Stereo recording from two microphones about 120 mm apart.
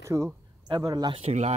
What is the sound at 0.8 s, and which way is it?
Speech, 35° right (ahead or behind).